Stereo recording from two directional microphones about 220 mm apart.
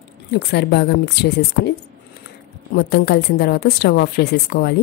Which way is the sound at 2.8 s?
50° left (ahead or behind).